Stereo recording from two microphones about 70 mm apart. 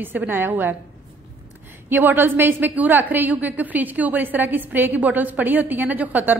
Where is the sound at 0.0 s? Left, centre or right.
Right.